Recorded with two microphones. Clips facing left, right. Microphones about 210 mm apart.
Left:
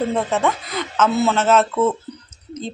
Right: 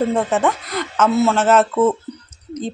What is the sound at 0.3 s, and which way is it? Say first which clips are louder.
Speech: right 2 dB; centre (ahead or behind).